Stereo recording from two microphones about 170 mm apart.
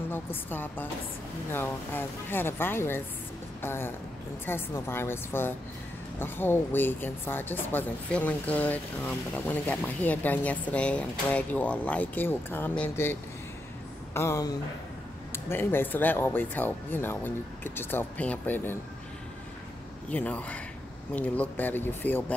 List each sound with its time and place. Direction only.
0.1 s speech: 10° left (ahead or behind)
20.1 s speech: 10° left (ahead or behind)